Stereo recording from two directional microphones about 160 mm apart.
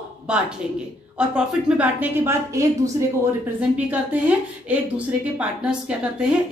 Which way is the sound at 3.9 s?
10° right (ahead or behind).